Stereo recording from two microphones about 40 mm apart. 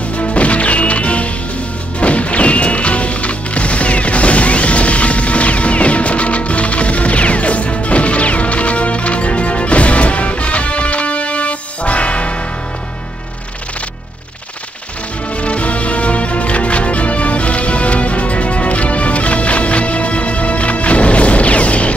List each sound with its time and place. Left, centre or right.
0.2 s music: left
15.3 s music: left